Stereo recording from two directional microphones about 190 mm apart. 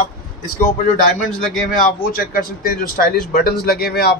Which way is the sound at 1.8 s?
50° left (ahead or behind).